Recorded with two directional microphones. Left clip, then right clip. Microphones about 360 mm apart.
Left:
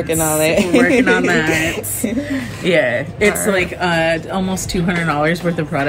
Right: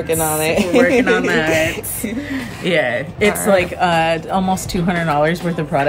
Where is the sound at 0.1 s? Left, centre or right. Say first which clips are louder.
Left 2 dB; centre.